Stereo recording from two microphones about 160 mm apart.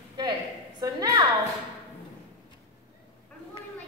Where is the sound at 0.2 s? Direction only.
25° right (ahead or behind).